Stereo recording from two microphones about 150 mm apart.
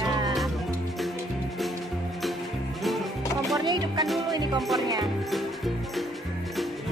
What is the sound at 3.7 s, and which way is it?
Music, 30° right (ahead or behind).